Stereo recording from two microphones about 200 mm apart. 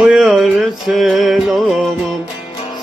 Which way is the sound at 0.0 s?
Centre (ahead or behind).